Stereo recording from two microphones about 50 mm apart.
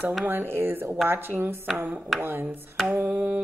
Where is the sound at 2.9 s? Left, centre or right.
Right.